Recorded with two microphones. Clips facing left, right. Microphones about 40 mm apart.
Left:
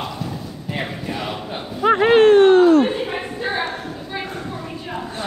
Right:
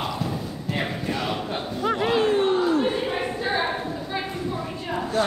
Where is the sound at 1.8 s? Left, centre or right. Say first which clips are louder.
Left 9 dB; left.